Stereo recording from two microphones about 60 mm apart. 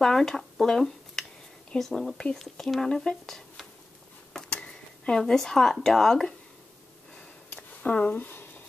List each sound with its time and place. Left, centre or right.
0.0 s speech: centre
7.8 s speech: left